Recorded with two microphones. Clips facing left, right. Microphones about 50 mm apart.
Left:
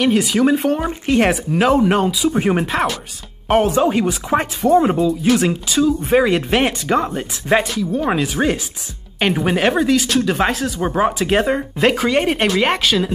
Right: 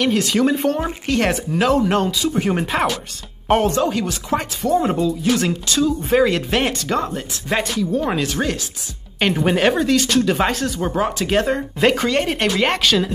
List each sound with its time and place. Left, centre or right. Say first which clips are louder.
0.0 s speech: left 2 dB; centre
2.6 s speech: left 1 dB; centre
3.7 s speech: left 4 dB; centre
4.7 s speech: left 3 dB; centre
5.2 s speech: left 3 dB; centre
9.2 s speech: even; centre